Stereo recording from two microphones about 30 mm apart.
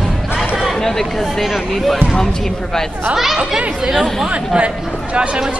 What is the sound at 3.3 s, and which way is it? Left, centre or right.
Speech, centre.